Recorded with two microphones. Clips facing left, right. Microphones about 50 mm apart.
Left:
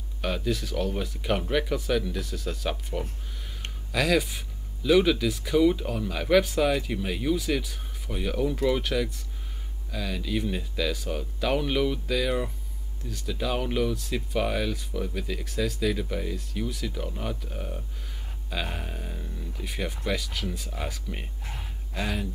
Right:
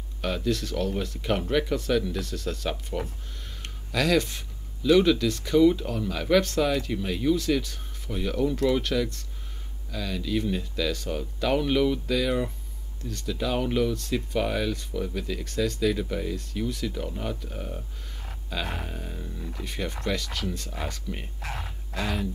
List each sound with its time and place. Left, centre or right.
0.2 s speech: centre
21.4 s speech: right
21.9 s speech: centre